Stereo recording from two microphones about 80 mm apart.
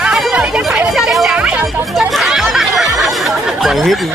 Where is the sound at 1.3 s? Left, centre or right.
Centre.